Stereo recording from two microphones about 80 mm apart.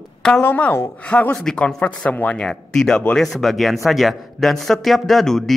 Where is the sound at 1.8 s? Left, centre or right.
Centre.